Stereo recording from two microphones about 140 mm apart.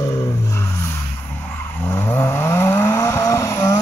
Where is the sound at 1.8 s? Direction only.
20° left (ahead or behind).